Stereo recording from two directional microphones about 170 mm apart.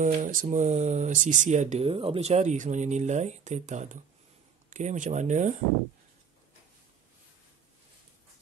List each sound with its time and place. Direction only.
0.0 s speech: 50° right (ahead or behind)
1.9 s speech: 30° right (ahead or behind)